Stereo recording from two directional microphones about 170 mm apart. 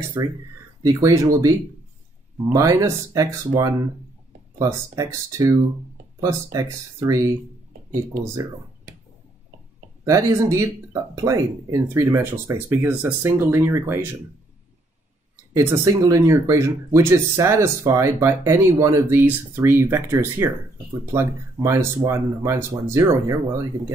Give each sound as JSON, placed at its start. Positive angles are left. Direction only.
{"t": 0.2, "sound": "speech", "side_deg": -15}
{"t": 2.5, "sound": "speech", "side_deg": -20}
{"t": 10.0, "sound": "speech", "side_deg": -20}
{"t": 15.5, "sound": "speech", "side_deg": -20}